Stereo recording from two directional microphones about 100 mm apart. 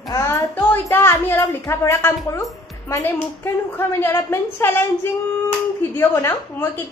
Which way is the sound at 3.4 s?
20° left (ahead or behind).